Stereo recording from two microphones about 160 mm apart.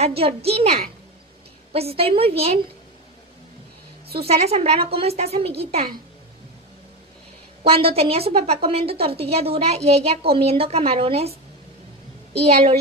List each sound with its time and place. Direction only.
0.0 s a woman's voice: 40° right (ahead or behind)
4.2 s a woman's voice: 40° right (ahead or behind)
7.6 s a woman's voice: 35° right (ahead or behind)